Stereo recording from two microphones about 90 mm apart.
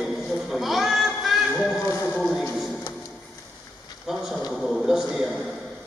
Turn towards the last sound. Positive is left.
turn(degrees=0)  # may be behind; listen again after turning